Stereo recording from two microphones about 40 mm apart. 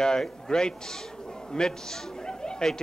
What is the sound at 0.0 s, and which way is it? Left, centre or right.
A man's voice, centre.